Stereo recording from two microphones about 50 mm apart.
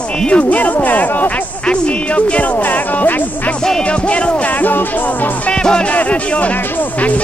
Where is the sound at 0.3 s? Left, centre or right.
Left.